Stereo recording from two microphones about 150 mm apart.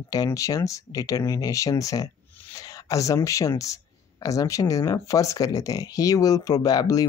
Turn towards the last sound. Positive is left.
turn(degrees=25)  # may be behind; listen again after turning